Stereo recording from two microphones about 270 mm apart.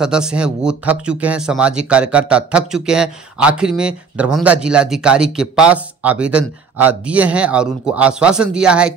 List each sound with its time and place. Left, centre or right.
0.0 s speech: centre